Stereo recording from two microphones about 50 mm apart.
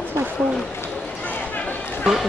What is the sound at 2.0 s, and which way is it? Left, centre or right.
Run, centre.